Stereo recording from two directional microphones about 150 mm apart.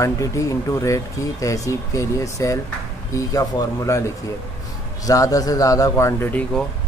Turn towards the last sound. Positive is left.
turn(degrees=10)  # may be behind; listen again after turning